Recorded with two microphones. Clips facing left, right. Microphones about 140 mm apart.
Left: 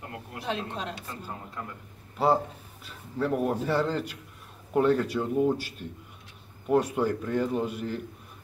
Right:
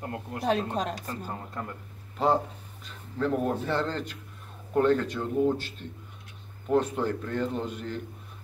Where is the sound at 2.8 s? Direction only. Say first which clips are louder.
Even; 10° left (ahead or behind).